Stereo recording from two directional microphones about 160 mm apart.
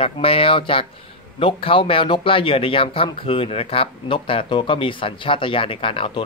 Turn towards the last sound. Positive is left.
turn(degrees=35)  # may be behind; listen again after turning